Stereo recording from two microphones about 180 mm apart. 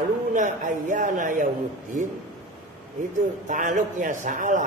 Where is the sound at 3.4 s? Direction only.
45° right (ahead or behind).